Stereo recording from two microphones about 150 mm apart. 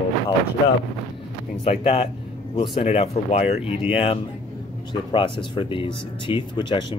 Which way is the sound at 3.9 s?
40° left (ahead or behind).